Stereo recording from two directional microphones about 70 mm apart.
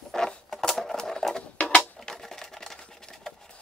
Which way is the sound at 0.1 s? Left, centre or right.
Centre.